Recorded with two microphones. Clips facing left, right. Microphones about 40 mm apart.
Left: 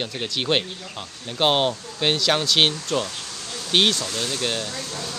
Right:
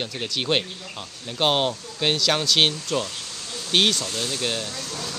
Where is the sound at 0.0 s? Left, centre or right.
Centre.